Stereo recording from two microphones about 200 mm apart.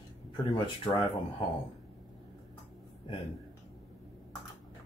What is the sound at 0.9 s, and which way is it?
Speech, 25° left (ahead or behind).